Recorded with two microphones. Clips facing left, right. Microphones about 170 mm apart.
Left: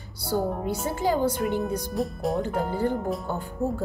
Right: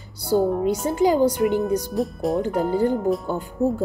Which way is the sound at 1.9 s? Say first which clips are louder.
Right 4 dB; centre (ahead or behind).